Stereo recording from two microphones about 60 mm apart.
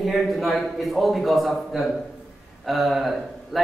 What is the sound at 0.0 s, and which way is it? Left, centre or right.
A man's voice, centre.